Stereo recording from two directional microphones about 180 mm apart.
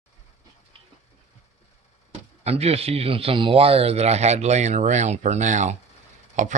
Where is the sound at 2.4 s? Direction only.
35° right (ahead or behind).